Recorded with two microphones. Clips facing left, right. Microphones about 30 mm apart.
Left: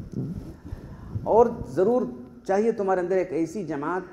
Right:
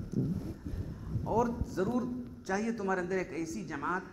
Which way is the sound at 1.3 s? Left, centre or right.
Centre.